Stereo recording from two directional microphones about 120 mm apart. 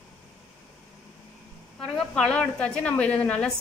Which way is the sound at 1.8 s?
5° left (ahead or behind).